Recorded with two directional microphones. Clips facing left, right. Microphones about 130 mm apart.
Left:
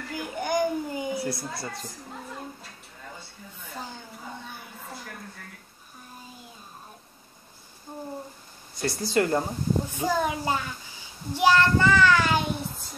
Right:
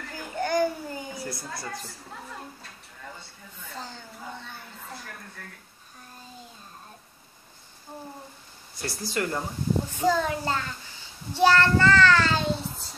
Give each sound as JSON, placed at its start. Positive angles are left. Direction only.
{"t": 0.1, "sound": "a sound", "side_deg": 15}
{"t": 1.1, "sound": "a woman's voice", "side_deg": 25}
{"t": 3.6, "sound": "a sound", "side_deg": 15}
{"t": 8.8, "sound": "a woman's voice", "side_deg": 25}
{"t": 9.8, "sound": "a child's voice", "side_deg": 15}
{"t": 11.3, "sound": "child singing", "side_deg": 15}